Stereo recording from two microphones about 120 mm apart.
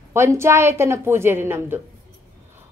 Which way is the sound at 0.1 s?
20° right (ahead or behind).